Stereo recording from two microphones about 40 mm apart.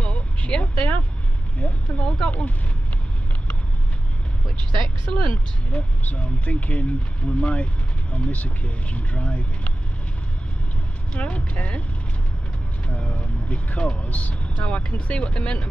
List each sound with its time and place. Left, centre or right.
0.0 s vehicle: left
1.6 s speech: left
4.8 s speech: left
11.1 s speech: left
12.8 s speech: left